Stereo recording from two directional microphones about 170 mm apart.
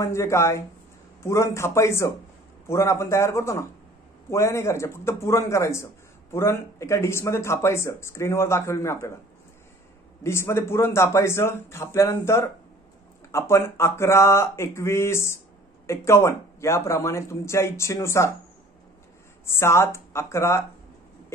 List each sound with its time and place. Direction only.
0.0 s speech: 15° left (ahead or behind)
10.2 s speech: 15° left (ahead or behind)
19.4 s speech: 15° left (ahead or behind)